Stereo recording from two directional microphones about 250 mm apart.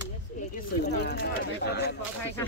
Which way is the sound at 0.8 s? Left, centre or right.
Left.